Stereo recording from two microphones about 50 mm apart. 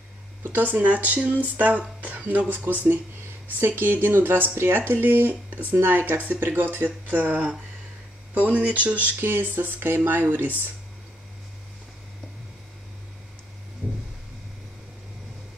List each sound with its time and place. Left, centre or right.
0.4 s speech: right
7.3 s speech: right
8.4 s speech: right
9.2 s speech: right